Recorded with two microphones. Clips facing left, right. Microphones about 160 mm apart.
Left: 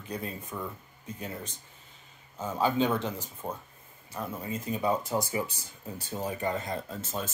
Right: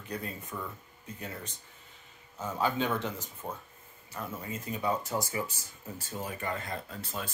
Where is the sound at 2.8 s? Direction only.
10° left (ahead or behind).